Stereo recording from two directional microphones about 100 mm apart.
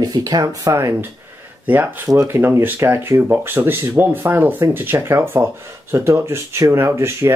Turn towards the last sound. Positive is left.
turn(degrees=-25)  # may be behind; listen again after turning